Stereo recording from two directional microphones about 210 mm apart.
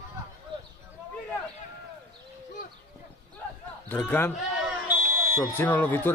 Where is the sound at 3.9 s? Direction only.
10° left (ahead or behind).